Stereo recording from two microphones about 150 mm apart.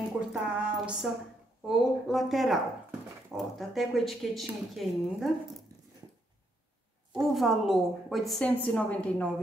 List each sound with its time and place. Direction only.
0.3 s a woman's voice: 5° right (ahead or behind)
5.7 s dog: 20° right (ahead or behind)
7.3 s speech: centre (ahead or behind)